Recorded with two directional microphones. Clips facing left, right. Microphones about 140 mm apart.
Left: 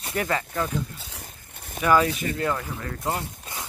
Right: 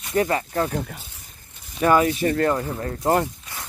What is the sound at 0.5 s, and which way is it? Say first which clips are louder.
Speech: right 4 dB; 45° right (ahead or behind).